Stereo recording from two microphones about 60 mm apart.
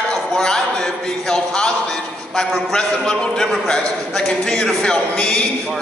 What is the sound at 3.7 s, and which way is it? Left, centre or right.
A man's voice, centre.